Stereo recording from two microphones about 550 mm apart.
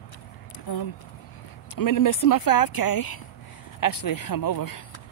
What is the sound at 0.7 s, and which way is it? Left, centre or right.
Speech, left.